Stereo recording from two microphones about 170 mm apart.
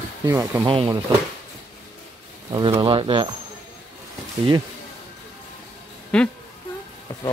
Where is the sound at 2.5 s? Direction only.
25° right (ahead or behind).